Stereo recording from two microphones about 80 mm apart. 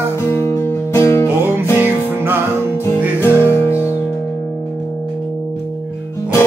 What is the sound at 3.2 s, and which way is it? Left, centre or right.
Music, left.